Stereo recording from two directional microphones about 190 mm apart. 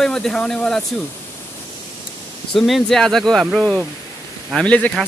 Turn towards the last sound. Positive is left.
turn(degrees=5)  # may be behind; listen again after turning